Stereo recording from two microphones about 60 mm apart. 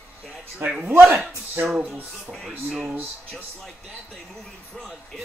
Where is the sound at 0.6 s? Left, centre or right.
Right.